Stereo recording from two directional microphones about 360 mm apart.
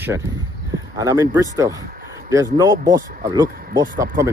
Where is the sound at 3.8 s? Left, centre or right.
Right.